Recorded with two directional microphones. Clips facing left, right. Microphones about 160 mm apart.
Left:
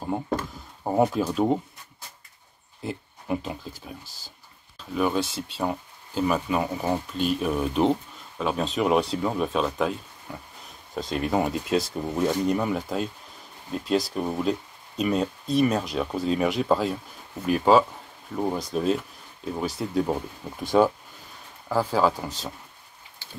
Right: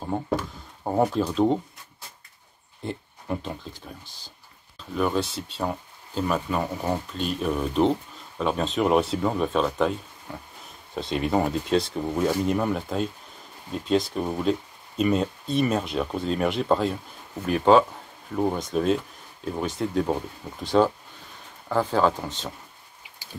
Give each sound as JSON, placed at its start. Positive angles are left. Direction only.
{"t": 0.0, "sound": "speech", "side_deg": 5}
{"t": 2.8, "sound": "speech", "side_deg": 5}
{"t": 11.0, "sound": "speech", "side_deg": 0}